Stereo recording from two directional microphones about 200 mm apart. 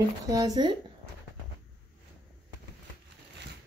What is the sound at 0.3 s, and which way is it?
Speech, 20° right (ahead or behind).